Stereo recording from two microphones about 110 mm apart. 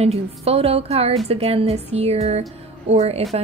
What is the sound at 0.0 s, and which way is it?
A woman's voice, 70° right (ahead or behind).